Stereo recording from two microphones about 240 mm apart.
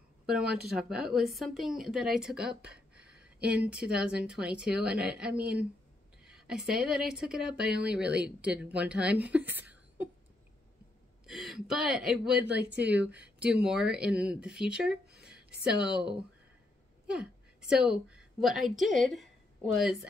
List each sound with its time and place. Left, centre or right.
0.3 s speech: centre
9.3 s a sound: centre
11.2 s speech: centre
12.4 s speech: right
12.9 s speech: centre
15.1 s a sound: centre
15.6 s speech: centre
17.1 s a woman's voice: centre